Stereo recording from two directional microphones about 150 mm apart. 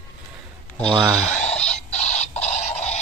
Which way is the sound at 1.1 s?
5° left (ahead or behind).